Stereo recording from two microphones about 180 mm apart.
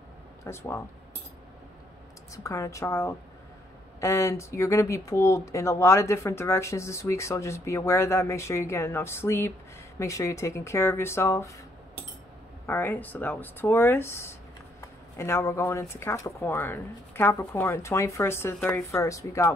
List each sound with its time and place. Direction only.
0.5 s speech: 15° left (ahead or behind)
2.3 s speech: 15° left (ahead or behind)
12.6 s speech: 10° left (ahead or behind)